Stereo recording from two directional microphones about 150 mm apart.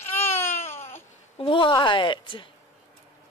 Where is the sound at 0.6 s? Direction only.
15° left (ahead or behind).